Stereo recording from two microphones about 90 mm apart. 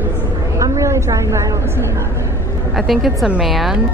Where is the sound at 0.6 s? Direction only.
35° right (ahead or behind).